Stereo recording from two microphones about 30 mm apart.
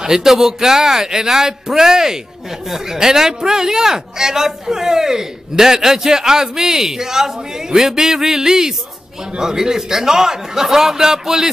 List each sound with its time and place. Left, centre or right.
0.0 s speech: centre